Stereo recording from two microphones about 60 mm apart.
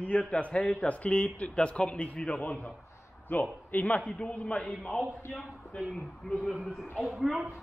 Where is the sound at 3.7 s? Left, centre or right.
Left.